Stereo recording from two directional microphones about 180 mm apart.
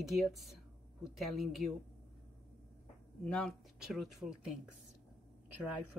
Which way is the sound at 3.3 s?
5° left (ahead or behind).